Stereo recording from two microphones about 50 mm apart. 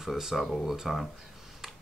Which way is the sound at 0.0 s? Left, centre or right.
Centre.